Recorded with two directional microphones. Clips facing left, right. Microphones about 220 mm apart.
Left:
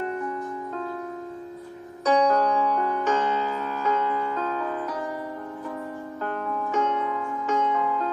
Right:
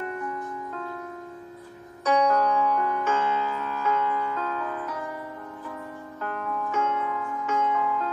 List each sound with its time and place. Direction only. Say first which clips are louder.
0.0 s music: left 3 dB; 30° left (ahead or behind)
2.0 s music: left 2 dB; 35° left (ahead or behind)
6.2 s music: left 1 dB; 30° left (ahead or behind)